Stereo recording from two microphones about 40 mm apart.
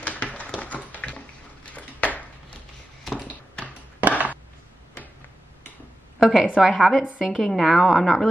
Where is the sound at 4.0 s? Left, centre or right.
Right.